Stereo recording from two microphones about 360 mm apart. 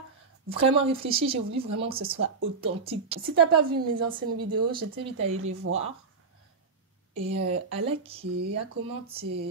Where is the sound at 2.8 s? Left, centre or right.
Centre.